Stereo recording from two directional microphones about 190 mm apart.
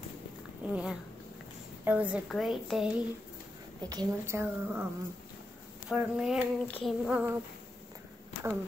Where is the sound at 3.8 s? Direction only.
20° right (ahead or behind).